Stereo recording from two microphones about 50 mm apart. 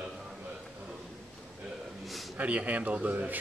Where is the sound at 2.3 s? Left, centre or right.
Right.